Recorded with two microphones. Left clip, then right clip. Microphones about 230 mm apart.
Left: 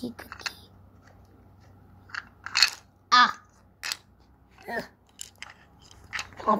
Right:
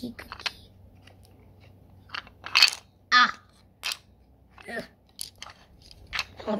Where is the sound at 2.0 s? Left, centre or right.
Right.